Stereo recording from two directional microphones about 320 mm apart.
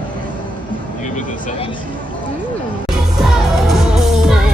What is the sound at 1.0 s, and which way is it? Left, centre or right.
Vehicle, left.